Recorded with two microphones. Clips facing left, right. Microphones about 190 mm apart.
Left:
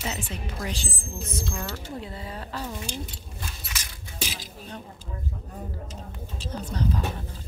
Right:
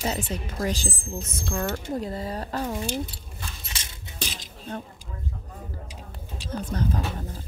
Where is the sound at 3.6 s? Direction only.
25° right (ahead or behind).